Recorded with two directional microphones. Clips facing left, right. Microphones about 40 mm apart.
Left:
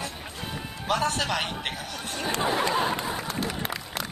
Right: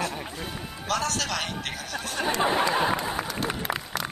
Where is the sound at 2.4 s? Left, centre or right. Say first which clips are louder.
Right 2 dB; right.